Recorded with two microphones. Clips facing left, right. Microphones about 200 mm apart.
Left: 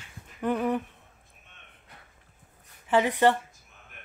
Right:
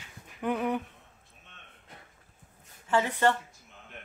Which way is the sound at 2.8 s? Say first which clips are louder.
Left 4 dB; 15° left (ahead or behind).